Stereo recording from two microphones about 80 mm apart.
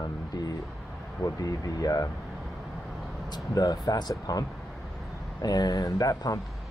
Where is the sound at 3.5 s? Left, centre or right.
Left.